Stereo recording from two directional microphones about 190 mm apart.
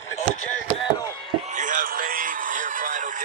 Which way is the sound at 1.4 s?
40° right (ahead or behind).